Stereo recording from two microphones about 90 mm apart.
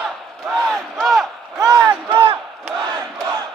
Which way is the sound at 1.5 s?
45° right (ahead or behind).